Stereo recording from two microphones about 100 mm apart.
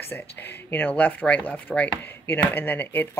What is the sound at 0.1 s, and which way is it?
Speech, 20° left (ahead or behind).